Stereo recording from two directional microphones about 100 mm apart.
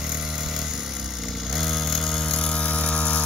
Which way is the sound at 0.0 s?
5° right (ahead or behind).